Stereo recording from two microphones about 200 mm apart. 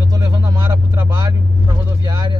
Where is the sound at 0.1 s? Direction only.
20° right (ahead or behind).